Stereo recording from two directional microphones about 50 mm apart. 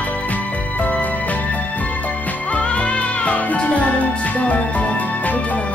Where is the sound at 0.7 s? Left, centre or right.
Left.